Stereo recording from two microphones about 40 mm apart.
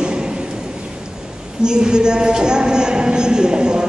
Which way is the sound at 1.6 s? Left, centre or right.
Right.